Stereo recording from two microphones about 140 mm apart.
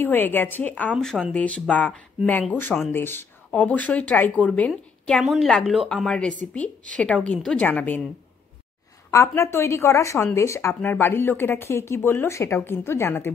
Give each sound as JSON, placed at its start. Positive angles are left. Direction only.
{"t": 0.0, "sound": "speech", "side_deg": 15}
{"t": 0.9, "sound": "speech", "side_deg": 0}
{"t": 9.1, "sound": "speech", "side_deg": 20}